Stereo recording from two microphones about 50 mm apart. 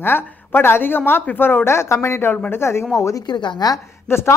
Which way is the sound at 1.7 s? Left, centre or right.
Left.